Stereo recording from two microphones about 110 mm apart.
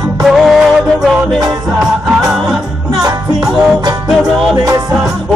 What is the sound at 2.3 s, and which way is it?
Music, 5° right (ahead or behind).